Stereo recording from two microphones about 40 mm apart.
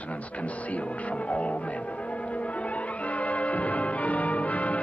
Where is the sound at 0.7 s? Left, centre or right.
Left.